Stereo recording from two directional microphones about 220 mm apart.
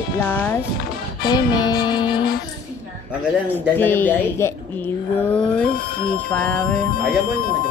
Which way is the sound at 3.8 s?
10° left (ahead or behind).